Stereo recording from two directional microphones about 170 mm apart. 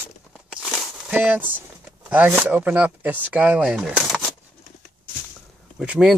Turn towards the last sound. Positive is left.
turn(degrees=-5)  # may be behind; listen again after turning